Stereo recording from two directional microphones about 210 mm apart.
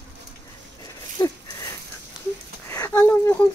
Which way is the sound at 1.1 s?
20° left (ahead or behind).